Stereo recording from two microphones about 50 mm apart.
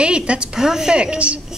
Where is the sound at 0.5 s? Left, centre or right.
Centre.